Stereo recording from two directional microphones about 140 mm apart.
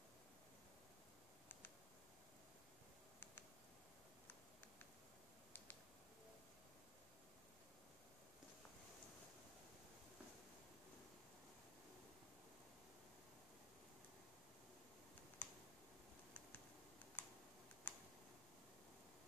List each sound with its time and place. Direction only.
15.4 s computer keyboard: 15° left (ahead or behind)
17.2 s computer keyboard: 15° left (ahead or behind)